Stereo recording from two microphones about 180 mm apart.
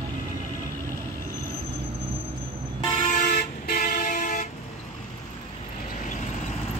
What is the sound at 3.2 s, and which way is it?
Vehicle, 50° left (ahead or behind).